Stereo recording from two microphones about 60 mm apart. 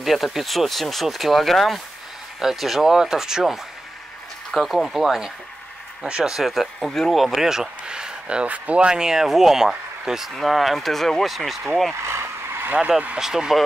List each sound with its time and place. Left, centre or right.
0.0 s speech: centre
6.0 s speech: centre
6.3 s speech: centre
11.9 s vehicle: right
13.2 s speech: centre